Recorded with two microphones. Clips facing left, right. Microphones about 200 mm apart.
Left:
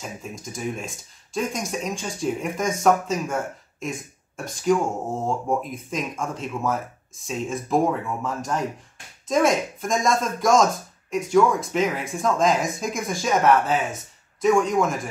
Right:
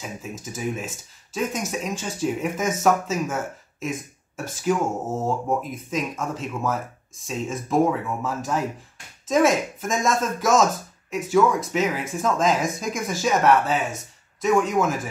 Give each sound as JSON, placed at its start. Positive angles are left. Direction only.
{"t": 0.4, "sound": "speech", "side_deg": -5}